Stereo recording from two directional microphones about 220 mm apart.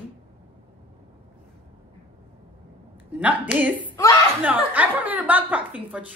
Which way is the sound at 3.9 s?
15° left (ahead or behind).